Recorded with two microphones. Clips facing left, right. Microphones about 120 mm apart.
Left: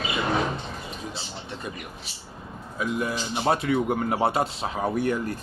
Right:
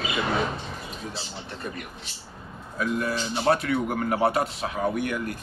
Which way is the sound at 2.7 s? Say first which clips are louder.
Right 1 dB; 15° left (ahead or behind).